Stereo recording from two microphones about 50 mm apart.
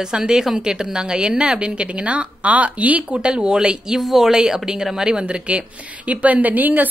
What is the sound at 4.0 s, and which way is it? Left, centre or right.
Speech, centre.